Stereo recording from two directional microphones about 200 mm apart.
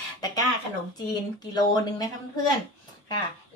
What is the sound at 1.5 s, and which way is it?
Speech, 20° left (ahead or behind).